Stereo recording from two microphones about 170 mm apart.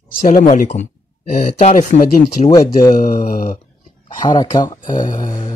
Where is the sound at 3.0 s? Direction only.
55° left (ahead or behind).